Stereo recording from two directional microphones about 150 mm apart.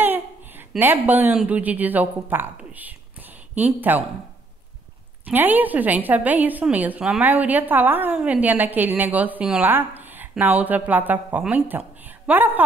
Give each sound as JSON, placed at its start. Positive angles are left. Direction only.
{"t": 0.0, "sound": "a child's voice", "side_deg": -15}
{"t": 5.2, "sound": "a woman's voice", "side_deg": -10}